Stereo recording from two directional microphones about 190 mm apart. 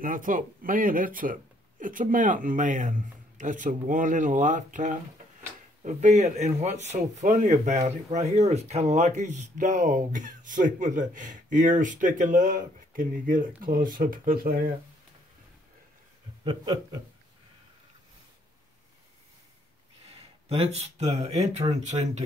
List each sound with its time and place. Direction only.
0.0 s a man's voice: 45° right (ahead or behind)
16.4 s speech: 20° right (ahead or behind)
20.4 s a man's voice: 35° right (ahead or behind)